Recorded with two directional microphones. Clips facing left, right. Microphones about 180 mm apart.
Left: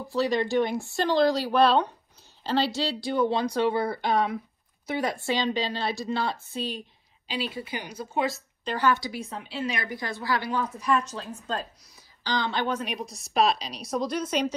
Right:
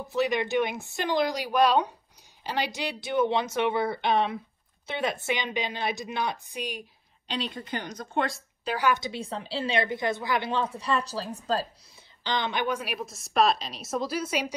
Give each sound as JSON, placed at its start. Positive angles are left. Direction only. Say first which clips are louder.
{"t": 0.1, "sound": "a woman's voice", "louder": "left 1 dB", "side_deg": -20}
{"t": 7.2, "sound": "speech", "louder": "left 1 dB", "side_deg": 5}
{"t": 8.6, "sound": "a woman's voice", "louder": "left 1 dB", "side_deg": -10}
{"t": 12.2, "sound": "a woman's voice", "louder": "left 1 dB", "side_deg": -20}